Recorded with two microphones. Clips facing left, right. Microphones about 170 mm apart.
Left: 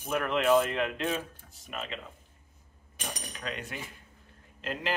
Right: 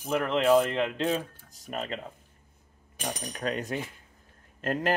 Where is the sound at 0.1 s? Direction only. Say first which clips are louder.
Right 2 dB; 30° right (ahead or behind).